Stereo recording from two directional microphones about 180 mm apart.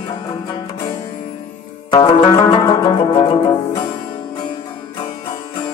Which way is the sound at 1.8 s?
25° left (ahead or behind).